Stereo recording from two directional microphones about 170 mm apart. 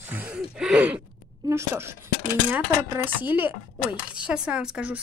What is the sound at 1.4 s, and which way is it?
Speech, 15° right (ahead or behind).